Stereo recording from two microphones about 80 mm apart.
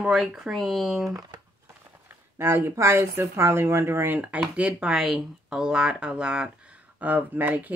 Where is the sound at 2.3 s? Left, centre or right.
Right.